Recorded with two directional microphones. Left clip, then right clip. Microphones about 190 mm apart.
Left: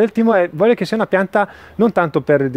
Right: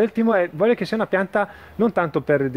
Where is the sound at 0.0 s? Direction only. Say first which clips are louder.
Left 5 dB; 45° left (ahead or behind).